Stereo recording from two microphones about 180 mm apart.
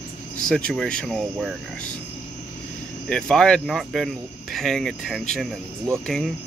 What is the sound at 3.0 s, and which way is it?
Speech, 5° left (ahead or behind).